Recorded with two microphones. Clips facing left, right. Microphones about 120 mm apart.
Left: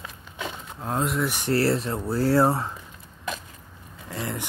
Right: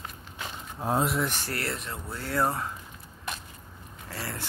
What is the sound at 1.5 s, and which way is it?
Speech, 35° left (ahead or behind).